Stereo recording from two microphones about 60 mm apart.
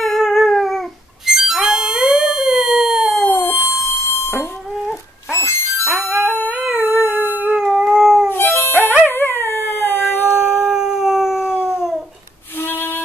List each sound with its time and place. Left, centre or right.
0.0 s music: centre
3.3 s a sound: left
5.3 s music: left
5.9 s music: centre
6.5 s howl: centre
6.8 s a sound: right
7.6 s howl: centre
8.3 s music: left
8.7 s music: centre
9.1 s dog: left
10.6 s howl: centre
11.5 s dog: centre
12.5 s music: left